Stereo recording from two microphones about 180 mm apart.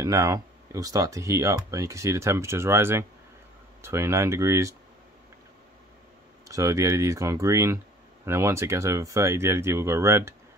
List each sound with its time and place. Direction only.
0.0 s speech: 20° right (ahead or behind)
6.5 s speech: 15° right (ahead or behind)